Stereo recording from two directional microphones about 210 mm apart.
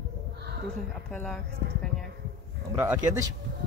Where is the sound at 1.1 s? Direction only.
5° left (ahead or behind).